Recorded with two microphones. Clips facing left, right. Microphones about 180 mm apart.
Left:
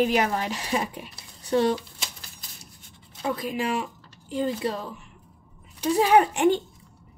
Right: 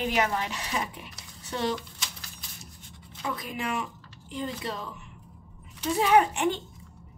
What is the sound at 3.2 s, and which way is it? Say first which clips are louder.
A woman's voice: left 6 dB; 30° left (ahead or behind).